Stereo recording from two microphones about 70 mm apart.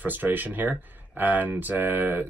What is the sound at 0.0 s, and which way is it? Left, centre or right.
Speech, right.